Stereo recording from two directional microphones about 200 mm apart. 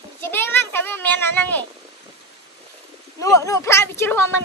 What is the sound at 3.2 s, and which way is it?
Speech, 15° left (ahead or behind).